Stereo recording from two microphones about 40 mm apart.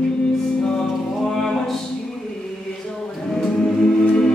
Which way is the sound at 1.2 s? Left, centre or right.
Centre.